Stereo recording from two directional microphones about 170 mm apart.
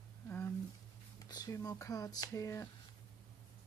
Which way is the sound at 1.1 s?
20° left (ahead or behind).